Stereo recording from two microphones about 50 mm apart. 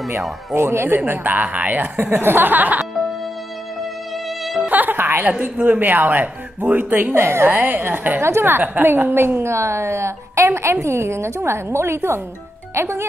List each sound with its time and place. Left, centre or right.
0.5 s speech: right
4.6 s music: right
5.4 s speech: right
8.2 s a woman's voice: right
8.5 s a woman's voice: right